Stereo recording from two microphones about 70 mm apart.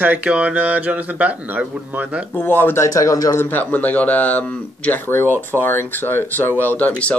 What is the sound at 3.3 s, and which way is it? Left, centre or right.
Speech, left.